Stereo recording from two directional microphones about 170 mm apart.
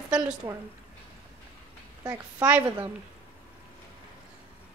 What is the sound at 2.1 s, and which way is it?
Speech, 10° right (ahead or behind).